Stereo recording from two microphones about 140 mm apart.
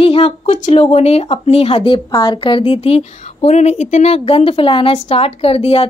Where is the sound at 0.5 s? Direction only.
55° left (ahead or behind).